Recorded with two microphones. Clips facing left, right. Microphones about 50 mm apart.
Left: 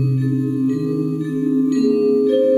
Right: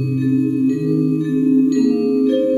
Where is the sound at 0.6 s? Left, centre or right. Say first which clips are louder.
Right 3 dB; centre.